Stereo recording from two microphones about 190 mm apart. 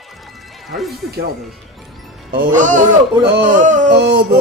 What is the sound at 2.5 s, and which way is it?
Speech, 40° right (ahead or behind).